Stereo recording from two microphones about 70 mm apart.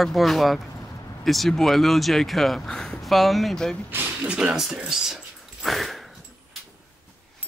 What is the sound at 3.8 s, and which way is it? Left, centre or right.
Speech, right.